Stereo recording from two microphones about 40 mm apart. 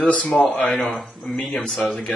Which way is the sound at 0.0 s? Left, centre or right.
Left.